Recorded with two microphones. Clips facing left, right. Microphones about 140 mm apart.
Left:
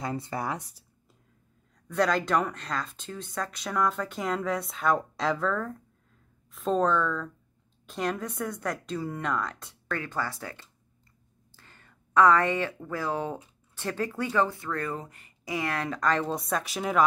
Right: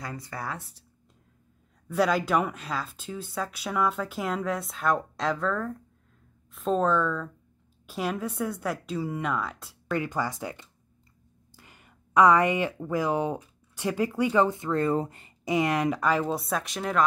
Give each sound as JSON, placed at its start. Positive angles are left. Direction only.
{"t": 0.0, "sound": "speech", "side_deg": 25}
{"t": 1.9, "sound": "speech", "side_deg": -5}
{"t": 9.9, "sound": "speech", "side_deg": -15}
{"t": 11.5, "sound": "a sound", "side_deg": -15}
{"t": 12.7, "sound": "speech", "side_deg": -15}